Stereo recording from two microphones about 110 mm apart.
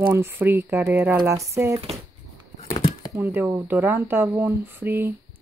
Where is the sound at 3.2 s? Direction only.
20° right (ahead or behind).